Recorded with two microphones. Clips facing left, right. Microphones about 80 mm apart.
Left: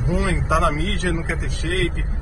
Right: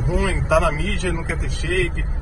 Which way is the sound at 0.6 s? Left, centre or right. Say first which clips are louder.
Left 1 dB; left.